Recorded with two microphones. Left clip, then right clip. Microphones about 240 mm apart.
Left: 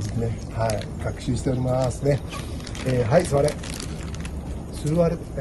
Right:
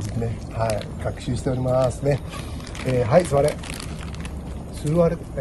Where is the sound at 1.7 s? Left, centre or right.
Right.